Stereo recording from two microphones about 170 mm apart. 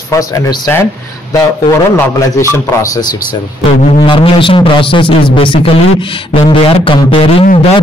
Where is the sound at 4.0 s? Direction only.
30° left (ahead or behind).